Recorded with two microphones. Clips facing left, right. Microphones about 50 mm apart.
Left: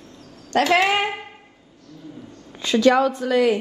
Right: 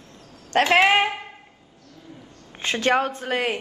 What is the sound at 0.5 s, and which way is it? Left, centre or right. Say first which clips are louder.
Speech: right 1 dB; right.